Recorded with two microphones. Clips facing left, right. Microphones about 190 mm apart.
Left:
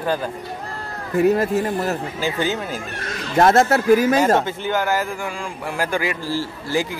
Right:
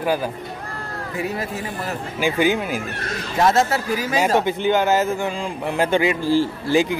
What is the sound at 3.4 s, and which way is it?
Speech, 55° left (ahead or behind).